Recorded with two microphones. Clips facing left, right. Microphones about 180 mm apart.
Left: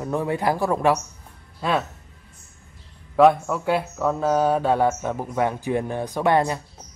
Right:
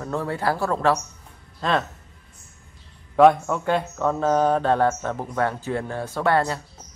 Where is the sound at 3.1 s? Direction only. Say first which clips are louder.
Right 1 dB; centre (ahead or behind).